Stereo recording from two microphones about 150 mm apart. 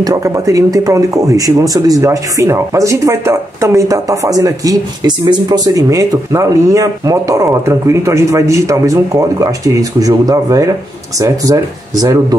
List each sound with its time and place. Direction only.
0.0 s speech: 25° right (ahead or behind)